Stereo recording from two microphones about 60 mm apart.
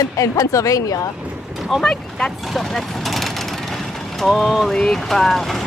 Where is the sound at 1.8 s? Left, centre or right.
Centre.